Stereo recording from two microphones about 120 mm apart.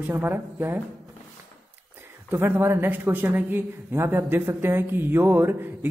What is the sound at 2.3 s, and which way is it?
A woman's voice, 20° right (ahead or behind).